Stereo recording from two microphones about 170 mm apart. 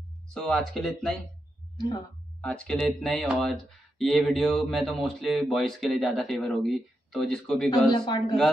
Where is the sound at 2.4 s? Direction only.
5° left (ahead or behind).